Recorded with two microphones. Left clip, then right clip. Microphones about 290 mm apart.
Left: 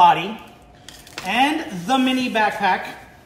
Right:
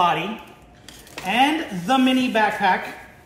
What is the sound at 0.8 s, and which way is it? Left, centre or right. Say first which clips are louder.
A man's voice: even; centre.